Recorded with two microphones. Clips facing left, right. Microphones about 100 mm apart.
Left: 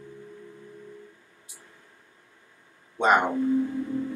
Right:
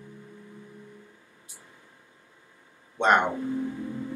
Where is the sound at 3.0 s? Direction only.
5° left (ahead or behind).